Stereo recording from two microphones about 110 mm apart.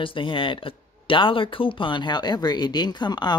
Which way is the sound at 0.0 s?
50° left (ahead or behind).